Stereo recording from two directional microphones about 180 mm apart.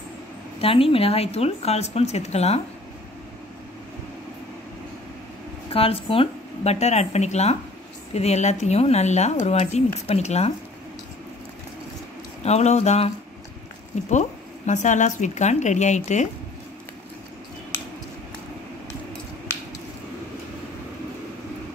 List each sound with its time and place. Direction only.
0.6 s speech: 30° left (ahead or behind)
5.7 s speech: 30° left (ahead or behind)
12.4 s speech: 40° left (ahead or behind)
14.7 s speech: 40° left (ahead or behind)